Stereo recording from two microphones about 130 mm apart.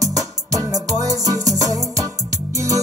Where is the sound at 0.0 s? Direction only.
25° right (ahead or behind).